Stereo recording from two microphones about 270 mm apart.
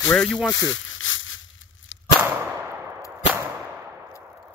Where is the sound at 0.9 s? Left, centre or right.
Left.